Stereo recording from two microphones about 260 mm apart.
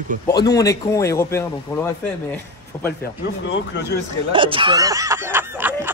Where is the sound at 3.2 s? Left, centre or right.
Left.